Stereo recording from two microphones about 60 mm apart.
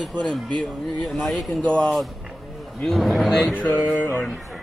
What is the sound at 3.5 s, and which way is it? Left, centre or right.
Speech, left.